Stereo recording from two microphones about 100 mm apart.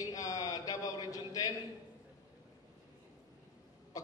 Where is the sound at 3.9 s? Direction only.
40° left (ahead or behind).